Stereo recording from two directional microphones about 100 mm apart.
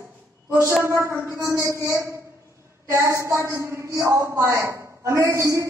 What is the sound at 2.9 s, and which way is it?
A woman's voice, 30° right (ahead or behind).